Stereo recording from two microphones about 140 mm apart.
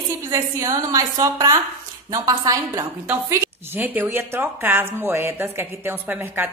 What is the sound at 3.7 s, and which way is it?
Speech, 15° right (ahead or behind).